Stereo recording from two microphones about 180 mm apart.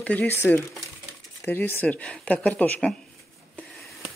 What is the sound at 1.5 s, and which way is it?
Speech, 10° left (ahead or behind).